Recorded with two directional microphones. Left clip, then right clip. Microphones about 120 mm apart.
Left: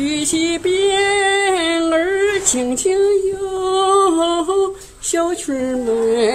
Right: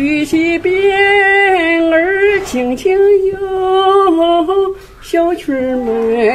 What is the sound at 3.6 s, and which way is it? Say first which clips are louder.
Humming: right 4 dB; 40° left (ahead or behind).